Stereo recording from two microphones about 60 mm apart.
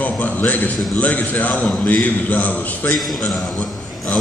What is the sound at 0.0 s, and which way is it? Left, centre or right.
A man's voice, left.